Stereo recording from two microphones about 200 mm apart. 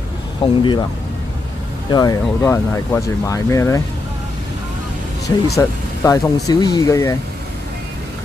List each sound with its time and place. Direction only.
0.4 s speech: 25° left (ahead or behind)
1.9 s speech: 20° left (ahead or behind)
5.6 s speech: 15° left (ahead or behind)